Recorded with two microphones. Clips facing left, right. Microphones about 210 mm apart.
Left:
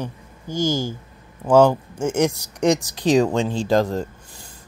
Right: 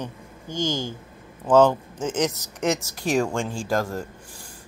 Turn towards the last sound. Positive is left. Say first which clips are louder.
# left 4 dB
turn(degrees=20)  # may be behind; listen again after turning